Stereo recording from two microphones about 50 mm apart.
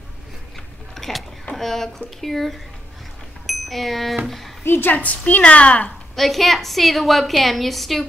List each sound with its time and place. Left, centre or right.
0.9 s a sound: centre
1.6 s a woman's voice: centre
4.6 s a woman's voice: left
4.9 s a woman's voice: left
6.1 s a woman's voice: centre